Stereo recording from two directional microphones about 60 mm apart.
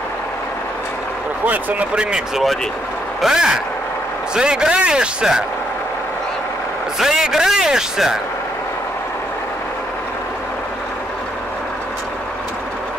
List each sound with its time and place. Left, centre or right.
1.4 s speech: right
2.1 s speech: centre
7.0 s speech: centre